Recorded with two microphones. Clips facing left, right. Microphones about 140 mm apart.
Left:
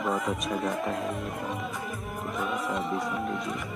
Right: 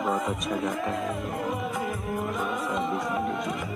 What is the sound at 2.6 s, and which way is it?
Music, centre (ahead or behind).